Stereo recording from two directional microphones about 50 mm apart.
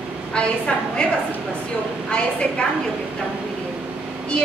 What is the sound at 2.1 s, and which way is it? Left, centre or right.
Speech, centre.